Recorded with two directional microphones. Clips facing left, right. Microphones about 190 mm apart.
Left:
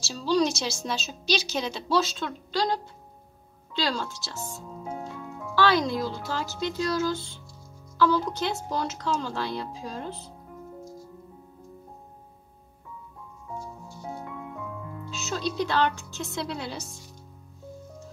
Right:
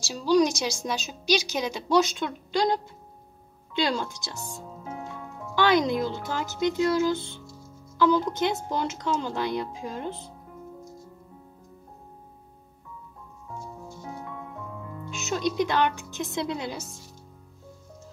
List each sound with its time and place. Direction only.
0.0 s a woman's voice: 15° right (ahead or behind)
15.2 s a woman's voice: 15° right (ahead or behind)